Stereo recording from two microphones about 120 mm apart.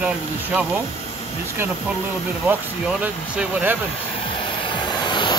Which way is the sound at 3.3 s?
15° right (ahead or behind).